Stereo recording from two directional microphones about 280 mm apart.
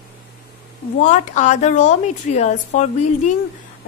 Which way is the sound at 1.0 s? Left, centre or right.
Left.